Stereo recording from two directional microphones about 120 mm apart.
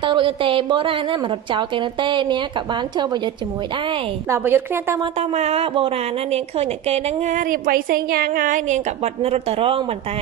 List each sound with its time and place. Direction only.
0.0 s a woman's voice: 45° right (ahead or behind)
4.3 s a woman's voice: 20° right (ahead or behind)
5.3 s a woman's voice: 60° right (ahead or behind)
8.5 s a woman's voice: 90° right; by 9.8 s 50° right (ahead or behind)